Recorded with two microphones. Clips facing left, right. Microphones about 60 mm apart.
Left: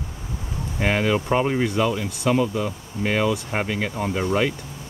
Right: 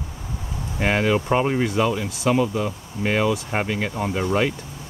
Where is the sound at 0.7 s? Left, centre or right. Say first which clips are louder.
Right 1 dB; centre.